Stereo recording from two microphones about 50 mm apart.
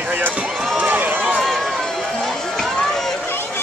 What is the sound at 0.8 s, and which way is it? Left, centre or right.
Run, right.